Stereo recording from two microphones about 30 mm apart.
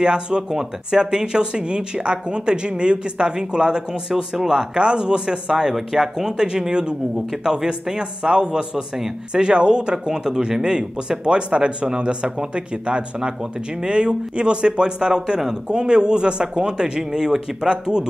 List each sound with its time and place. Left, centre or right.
0.0 s speech: right
5.8 s speech: centre
10.6 s speech: right